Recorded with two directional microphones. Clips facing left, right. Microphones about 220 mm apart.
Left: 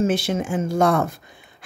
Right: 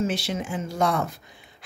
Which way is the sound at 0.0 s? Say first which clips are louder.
Left 6 dB; 50° left (ahead or behind).